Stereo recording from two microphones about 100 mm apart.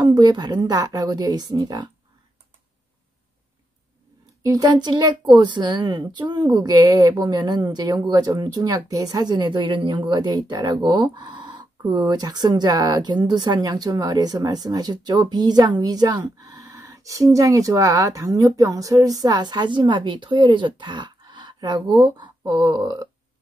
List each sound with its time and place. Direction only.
0.0 s speech: 45° right (ahead or behind)
4.4 s speech: 40° right (ahead or behind)